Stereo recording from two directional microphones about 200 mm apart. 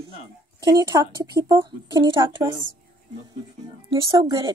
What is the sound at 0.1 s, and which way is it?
Speech, 20° right (ahead or behind).